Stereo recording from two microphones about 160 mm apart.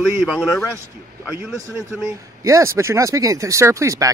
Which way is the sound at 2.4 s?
20° right (ahead or behind).